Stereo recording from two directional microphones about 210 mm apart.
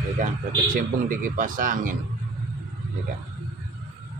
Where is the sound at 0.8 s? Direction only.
40° right (ahead or behind).